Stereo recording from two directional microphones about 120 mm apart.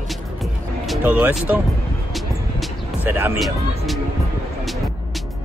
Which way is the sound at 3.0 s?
15° right (ahead or behind).